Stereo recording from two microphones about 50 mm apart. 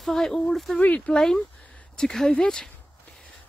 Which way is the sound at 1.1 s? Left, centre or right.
Centre.